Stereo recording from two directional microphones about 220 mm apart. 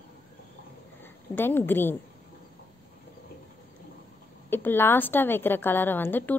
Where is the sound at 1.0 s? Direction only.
10° left (ahead or behind).